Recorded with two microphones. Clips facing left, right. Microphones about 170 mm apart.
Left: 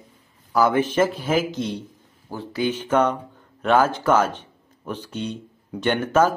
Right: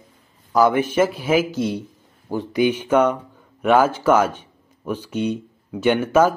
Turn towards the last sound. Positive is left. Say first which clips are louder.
# right 3 dB
turn(degrees=-10)  # may be behind; listen again after turning